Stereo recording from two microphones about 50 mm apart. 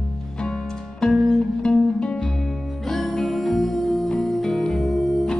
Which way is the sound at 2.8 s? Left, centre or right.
Centre.